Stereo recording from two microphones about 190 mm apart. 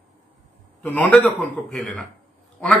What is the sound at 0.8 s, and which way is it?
A man's voice, 5° left (ahead or behind).